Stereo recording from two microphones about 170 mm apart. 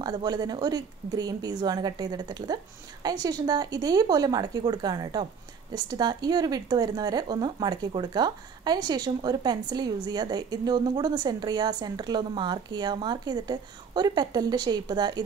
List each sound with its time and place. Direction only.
0.0 s speech: 25° right (ahead or behind)